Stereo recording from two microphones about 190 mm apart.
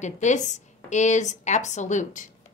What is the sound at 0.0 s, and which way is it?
A woman's voice, 40° left (ahead or behind).